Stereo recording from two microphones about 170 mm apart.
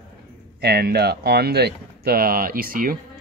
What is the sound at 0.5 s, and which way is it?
Speech, 70° right (ahead or behind).